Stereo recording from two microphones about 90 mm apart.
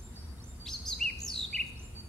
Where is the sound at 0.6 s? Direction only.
5° left (ahead or behind).